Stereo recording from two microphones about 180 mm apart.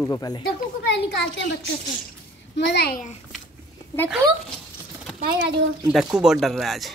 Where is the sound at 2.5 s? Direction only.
70° left (ahead or behind).